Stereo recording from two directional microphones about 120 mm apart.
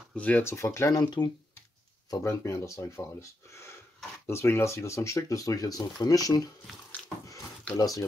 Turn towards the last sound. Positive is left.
turn(degrees=30)  # may be behind; listen again after turning